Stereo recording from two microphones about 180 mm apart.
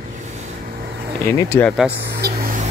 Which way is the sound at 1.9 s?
65° right (ahead or behind).